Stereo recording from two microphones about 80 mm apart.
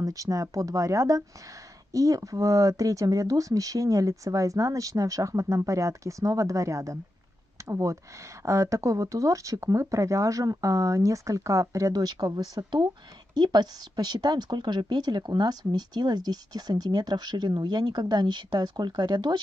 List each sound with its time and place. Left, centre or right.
0.0 s speech: right